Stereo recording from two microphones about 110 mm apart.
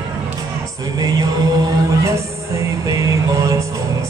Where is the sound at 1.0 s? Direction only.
35° right (ahead or behind).